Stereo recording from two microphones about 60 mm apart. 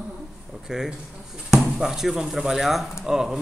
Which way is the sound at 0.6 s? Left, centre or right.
Centre.